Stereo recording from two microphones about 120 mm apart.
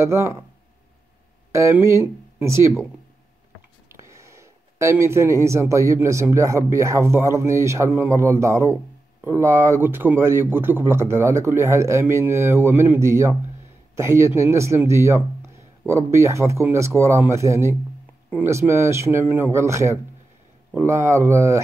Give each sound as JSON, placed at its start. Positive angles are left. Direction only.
{"t": 0.0, "sound": "speech", "side_deg": -25}
{"t": 1.5, "sound": "speech", "side_deg": -20}
{"t": 3.9, "sound": "speech", "side_deg": -25}